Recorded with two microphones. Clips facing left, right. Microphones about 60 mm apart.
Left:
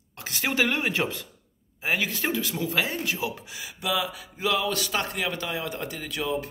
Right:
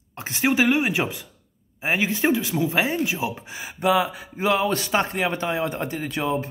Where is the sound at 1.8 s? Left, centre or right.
Right.